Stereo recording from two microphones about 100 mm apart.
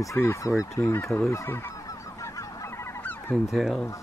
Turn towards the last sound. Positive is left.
turn(degrees=0)  # may be behind; listen again after turning